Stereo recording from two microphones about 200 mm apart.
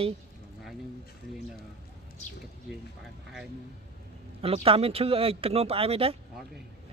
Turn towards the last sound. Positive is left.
turn(degrees=-30)  # may be behind; listen again after turning